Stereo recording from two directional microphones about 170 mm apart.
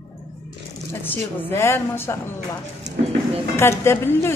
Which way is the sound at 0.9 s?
10° left (ahead or behind).